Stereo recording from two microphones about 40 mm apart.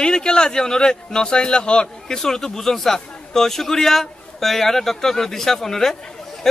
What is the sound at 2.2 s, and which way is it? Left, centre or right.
A man's voice, centre.